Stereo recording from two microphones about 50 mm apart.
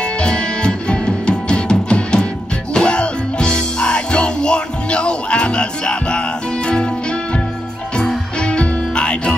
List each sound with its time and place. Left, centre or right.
0.0 s music: centre